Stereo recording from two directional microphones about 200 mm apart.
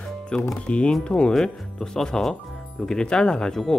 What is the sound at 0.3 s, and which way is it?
Speech, 10° left (ahead or behind).